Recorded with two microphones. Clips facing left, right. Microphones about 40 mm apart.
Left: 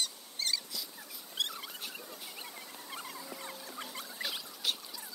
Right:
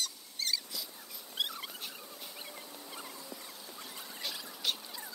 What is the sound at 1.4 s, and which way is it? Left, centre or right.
Rodents, centre.